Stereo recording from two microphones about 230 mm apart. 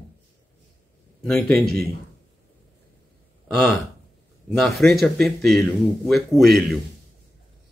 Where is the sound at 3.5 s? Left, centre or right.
Centre.